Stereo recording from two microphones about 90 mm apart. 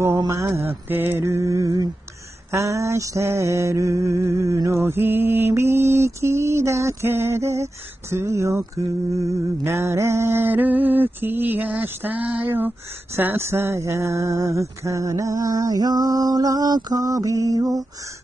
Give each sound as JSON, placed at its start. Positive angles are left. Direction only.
{"t": 0.3, "sound": "music", "side_deg": -30}